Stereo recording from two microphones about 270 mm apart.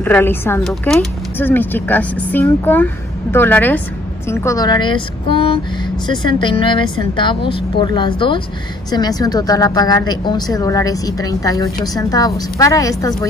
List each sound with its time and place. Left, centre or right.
0.0 s a woman's voice: centre